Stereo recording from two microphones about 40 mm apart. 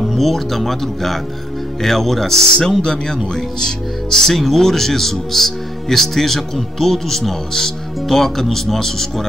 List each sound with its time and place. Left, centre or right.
0.0 s speech: centre
4.3 s speech: centre